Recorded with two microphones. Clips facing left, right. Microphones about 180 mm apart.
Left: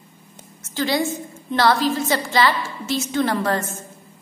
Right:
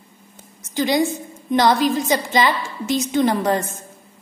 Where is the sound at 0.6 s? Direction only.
15° right (ahead or behind).